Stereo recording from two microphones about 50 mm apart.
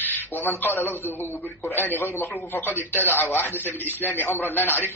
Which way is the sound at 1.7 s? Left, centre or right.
Left.